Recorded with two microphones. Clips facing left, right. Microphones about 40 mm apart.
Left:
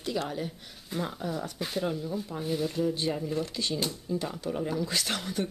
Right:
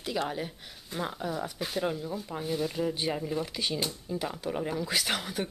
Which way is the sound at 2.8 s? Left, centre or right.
Centre.